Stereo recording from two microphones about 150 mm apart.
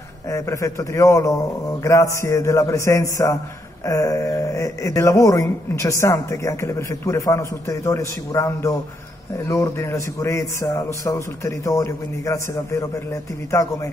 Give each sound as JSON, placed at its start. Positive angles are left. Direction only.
{"t": 0.3, "sound": "speech", "side_deg": 20}